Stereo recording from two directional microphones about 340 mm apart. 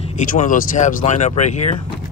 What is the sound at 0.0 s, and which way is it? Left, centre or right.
Speech, left.